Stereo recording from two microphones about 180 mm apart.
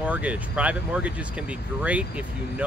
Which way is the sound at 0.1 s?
5° right (ahead or behind).